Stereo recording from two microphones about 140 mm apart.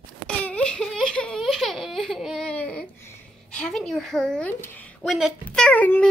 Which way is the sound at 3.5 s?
5° left (ahead or behind).